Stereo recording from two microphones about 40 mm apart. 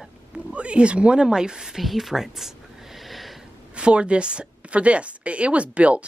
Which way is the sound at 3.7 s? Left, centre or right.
Right.